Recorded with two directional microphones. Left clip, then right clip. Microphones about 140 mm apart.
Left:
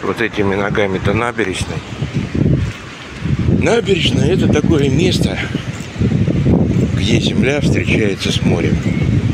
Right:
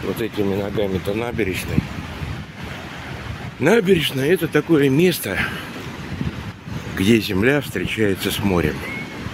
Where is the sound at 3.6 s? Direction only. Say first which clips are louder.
Left 1 dB; 25° right (ahead or behind).